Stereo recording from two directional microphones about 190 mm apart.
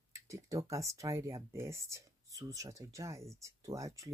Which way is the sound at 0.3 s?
15° right (ahead or behind).